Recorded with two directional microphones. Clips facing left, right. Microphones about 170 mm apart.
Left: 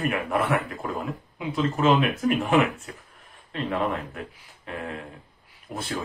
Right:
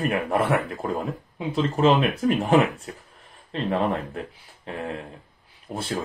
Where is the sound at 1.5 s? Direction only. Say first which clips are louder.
Right 2 dB; 30° right (ahead or behind).